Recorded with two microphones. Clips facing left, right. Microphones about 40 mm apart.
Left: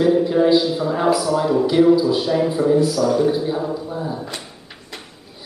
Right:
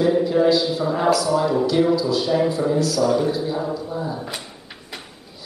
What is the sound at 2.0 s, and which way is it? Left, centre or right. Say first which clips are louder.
Speech: left 3 dB; centre.